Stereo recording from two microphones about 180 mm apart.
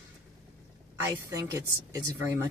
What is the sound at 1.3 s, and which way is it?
Speech, 20° right (ahead or behind).